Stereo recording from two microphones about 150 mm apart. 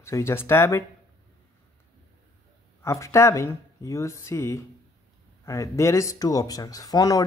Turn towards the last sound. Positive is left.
turn(degrees=25)  # may be behind; listen again after turning